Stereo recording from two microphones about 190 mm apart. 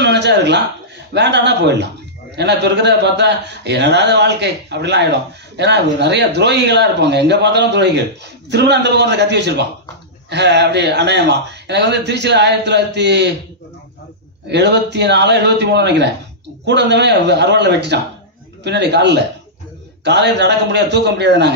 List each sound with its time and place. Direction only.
0.0 s a sound: 65° right (ahead or behind)
1.1 s a man's voice: 65° right (ahead or behind)
14.5 s a man's voice: 65° right (ahead or behind)